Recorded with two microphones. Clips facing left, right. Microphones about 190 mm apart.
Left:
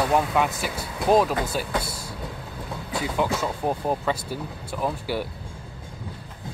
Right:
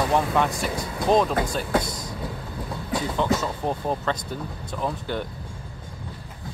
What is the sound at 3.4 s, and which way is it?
Speech, 10° left (ahead or behind).